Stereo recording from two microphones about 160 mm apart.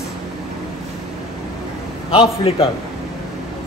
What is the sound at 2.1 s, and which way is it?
Speech, 35° left (ahead or behind).